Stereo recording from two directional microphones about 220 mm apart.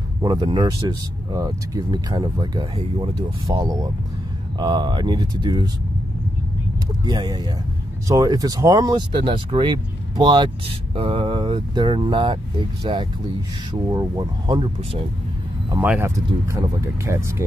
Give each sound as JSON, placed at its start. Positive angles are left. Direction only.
{"t": 0.2, "sound": "speech", "side_deg": -20}
{"t": 7.1, "sound": "speech", "side_deg": -15}
{"t": 15.7, "sound": "speech", "side_deg": -10}